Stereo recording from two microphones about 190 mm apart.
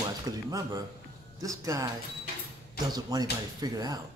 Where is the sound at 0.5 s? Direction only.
20° right (ahead or behind).